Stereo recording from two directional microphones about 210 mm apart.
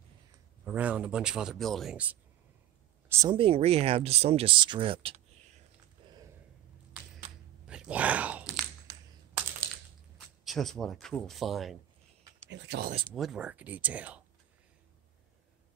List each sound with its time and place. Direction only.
0.7 s speech: 5° right (ahead or behind)
3.1 s speech: 15° right (ahead or behind)
3.3 s speech: 25° right (ahead or behind)
6.0 s a sound: 20° right (ahead or behind)
7.6 s biting: 5° right (ahead or behind)
10.4 s speech: centre (ahead or behind)
12.4 s speech: 55° right (ahead or behind)
13.1 s speech: centre (ahead or behind)